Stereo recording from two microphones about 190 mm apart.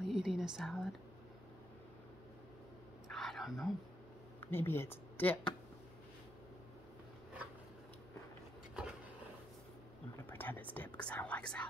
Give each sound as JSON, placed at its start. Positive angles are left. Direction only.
{"t": 0.0, "sound": "speech", "side_deg": -5}
{"t": 3.1, "sound": "whispering", "side_deg": 0}
{"t": 4.5, "sound": "speech", "side_deg": 10}
{"t": 10.3, "sound": "speech", "side_deg": 10}